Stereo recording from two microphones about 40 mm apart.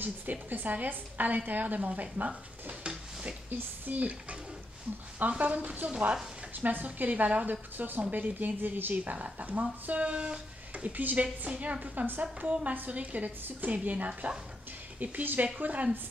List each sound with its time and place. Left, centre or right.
0.0 s a woman's voice: right
2.8 s a sound: right
3.4 s a woman's voice: right
4.0 s speech: right
5.4 s speech: right
6.5 s speech: right
7.7 s a woman's voice: right
9.0 s speech: right
11.1 s speech: right
13.4 s a woman's voice: right
13.8 s a woman's voice: right